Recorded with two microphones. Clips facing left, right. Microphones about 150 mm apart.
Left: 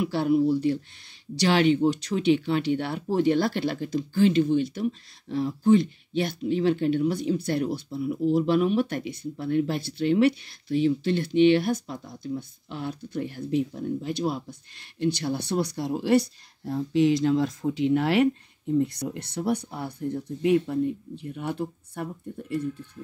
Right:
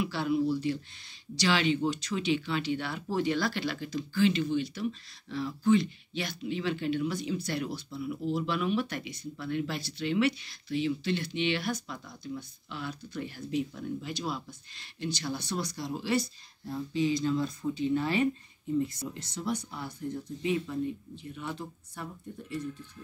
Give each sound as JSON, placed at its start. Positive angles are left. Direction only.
{"t": 0.0, "sound": "speech", "side_deg": 50}
{"t": 18.8, "sound": "speech", "side_deg": 65}